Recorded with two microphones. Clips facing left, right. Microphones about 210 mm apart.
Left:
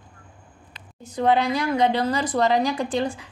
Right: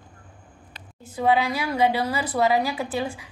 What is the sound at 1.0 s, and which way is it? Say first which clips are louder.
A woman's voice: left 1 dB; 5° right (ahead or behind).